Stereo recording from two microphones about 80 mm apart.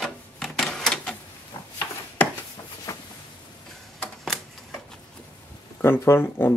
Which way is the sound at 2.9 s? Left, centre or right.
Left.